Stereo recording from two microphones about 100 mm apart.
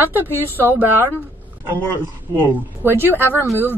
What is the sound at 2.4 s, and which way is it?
Speech, 20° right (ahead or behind).